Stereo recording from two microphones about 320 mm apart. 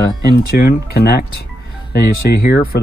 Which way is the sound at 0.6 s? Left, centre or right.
Left.